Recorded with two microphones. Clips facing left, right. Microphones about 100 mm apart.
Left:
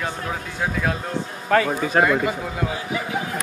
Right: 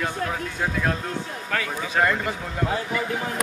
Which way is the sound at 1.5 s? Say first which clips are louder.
Left 10 dB; 40° left (ahead or behind).